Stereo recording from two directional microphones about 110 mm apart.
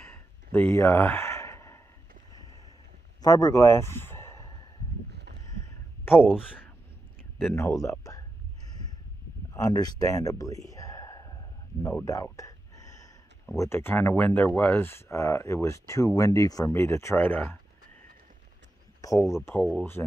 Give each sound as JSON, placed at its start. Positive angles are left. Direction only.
{"t": 0.1, "sound": "a sound", "side_deg": 20}
{"t": 3.2, "sound": "speech", "side_deg": 35}
{"t": 6.3, "sound": "speech", "side_deg": 15}
{"t": 9.5, "sound": "speech", "side_deg": 35}
{"t": 12.0, "sound": "a sound", "side_deg": 30}
{"t": 13.6, "sound": "speech", "side_deg": 25}
{"t": 18.9, "sound": "speech", "side_deg": 30}